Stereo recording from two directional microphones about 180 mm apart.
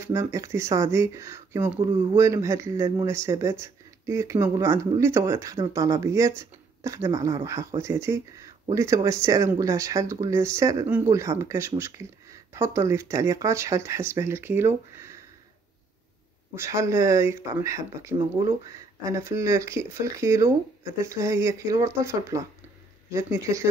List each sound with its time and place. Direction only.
0.0 s speech: 15° right (ahead or behind)
1.8 s speech: 30° right (ahead or behind)
2.1 s speech: 15° right (ahead or behind)
16.5 s speech: 15° right (ahead or behind)